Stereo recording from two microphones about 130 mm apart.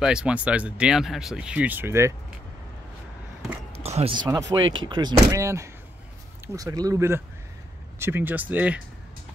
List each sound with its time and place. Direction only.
0.0 s speech: 5° right (ahead or behind)
3.8 s speech: 55° right (ahead or behind)
4.3 s speech: 30° right (ahead or behind); by 8.8 s 10° right (ahead or behind)